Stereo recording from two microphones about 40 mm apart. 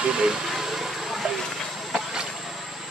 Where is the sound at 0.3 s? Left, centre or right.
Centre.